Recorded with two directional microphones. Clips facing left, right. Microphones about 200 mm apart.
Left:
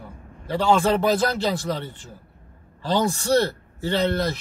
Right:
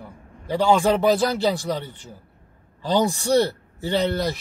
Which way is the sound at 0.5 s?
15° right (ahead or behind).